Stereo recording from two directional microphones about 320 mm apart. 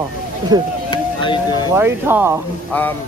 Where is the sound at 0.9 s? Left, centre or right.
Centre.